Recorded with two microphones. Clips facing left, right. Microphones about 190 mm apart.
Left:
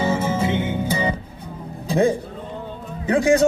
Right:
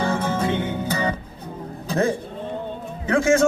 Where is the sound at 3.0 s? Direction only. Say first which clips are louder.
Left 2 dB; 20° left (ahead or behind).